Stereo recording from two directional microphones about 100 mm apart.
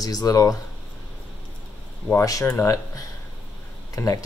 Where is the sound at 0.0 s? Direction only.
40° left (ahead or behind).